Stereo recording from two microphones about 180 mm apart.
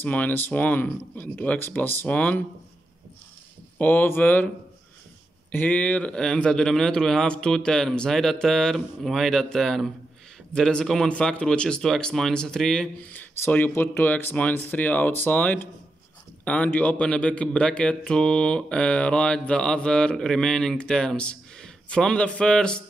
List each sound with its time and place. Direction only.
0.0 s speech: 10° left (ahead or behind)
3.7 s speech: 10° left (ahead or behind)
5.5 s a man's voice: 10° left (ahead or behind)